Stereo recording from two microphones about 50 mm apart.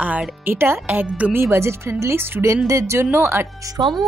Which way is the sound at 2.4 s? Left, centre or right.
Right.